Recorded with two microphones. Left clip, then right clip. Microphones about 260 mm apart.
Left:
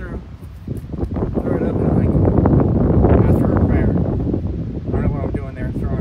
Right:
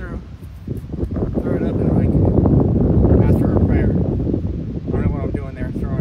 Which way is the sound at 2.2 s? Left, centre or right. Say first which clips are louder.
Left 2 dB; right.